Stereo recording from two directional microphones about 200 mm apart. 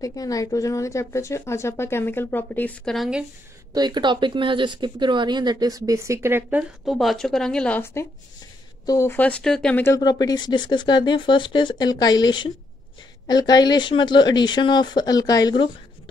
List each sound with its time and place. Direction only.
0.0 s speech: 15° left (ahead or behind); by 3.3 s centre (ahead or behind)
3.7 s speech: 20° right (ahead or behind)
6.8 s a woman's voice: centre (ahead or behind)
9.9 s speech: 20° left (ahead or behind)